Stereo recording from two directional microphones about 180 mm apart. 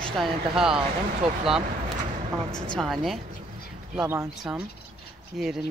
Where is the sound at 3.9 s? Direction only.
10° right (ahead or behind).